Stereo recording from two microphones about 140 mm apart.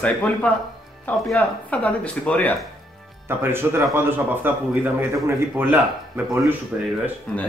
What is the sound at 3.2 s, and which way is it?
Speech, 15° right (ahead or behind).